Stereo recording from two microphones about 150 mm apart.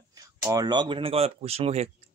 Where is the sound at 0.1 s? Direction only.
25° right (ahead or behind).